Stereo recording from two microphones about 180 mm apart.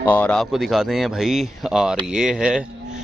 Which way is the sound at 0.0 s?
10° left (ahead or behind).